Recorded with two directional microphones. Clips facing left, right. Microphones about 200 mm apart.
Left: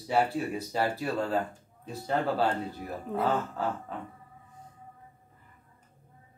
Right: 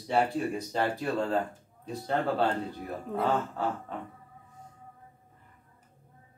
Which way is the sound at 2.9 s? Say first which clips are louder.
Even; centre (ahead or behind).